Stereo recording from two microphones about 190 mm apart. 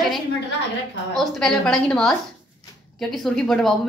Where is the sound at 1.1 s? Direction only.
Centre (ahead or behind).